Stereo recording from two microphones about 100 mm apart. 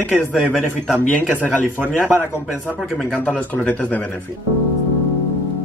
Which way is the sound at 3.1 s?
15° left (ahead or behind).